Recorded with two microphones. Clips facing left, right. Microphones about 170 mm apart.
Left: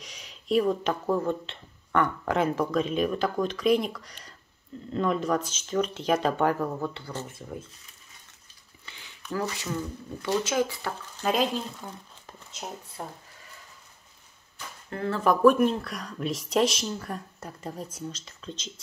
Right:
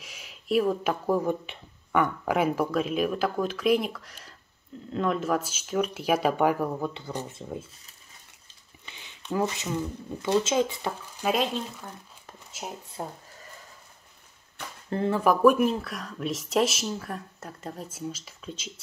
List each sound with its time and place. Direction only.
0.0 s speech: 5° right (ahead or behind); by 7.6 s 25° right (ahead or behind)
8.8 s speech: 20° right (ahead or behind)
11.3 s speech: centre (ahead or behind)
13.0 s speech: 25° right (ahead or behind)
15.0 s speech: 10° right (ahead or behind)